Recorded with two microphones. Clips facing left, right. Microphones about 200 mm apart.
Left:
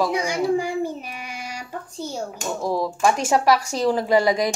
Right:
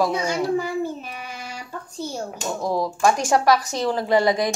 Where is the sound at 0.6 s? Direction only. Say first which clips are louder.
Left 1 dB; 10° left (ahead or behind).